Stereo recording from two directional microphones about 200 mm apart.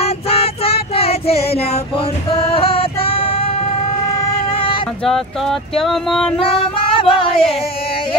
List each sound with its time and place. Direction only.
0.0 s child singing: 30° left (ahead or behind)
2.5 s female singing: 30° left (ahead or behind)
5.0 s speech: centre (ahead or behind)
6.4 s female singing: 25° left (ahead or behind)